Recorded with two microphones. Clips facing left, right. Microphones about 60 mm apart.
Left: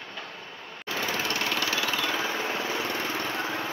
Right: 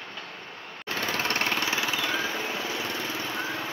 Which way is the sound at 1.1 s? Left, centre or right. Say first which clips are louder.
Right 2 dB; right.